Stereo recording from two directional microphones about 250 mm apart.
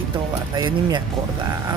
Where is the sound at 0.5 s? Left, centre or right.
Centre.